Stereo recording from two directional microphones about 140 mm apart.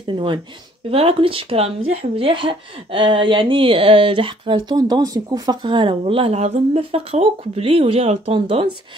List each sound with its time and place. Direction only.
0.0 s speech: 35° right (ahead or behind)